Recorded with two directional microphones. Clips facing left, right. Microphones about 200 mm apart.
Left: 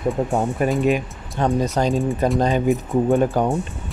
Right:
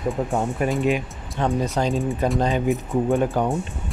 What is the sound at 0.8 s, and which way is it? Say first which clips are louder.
Speech: left 3 dB; 45° left (ahead or behind).